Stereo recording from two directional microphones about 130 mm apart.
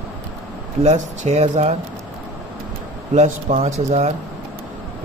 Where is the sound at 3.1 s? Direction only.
55° right (ahead or behind).